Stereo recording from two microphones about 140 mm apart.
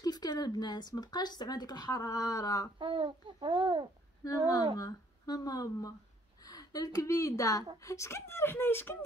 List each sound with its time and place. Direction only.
0.0 s speech: 30° left (ahead or behind)
2.8 s a child's voice: 35° right (ahead or behind)
4.2 s a woman's voice: 25° left (ahead or behind)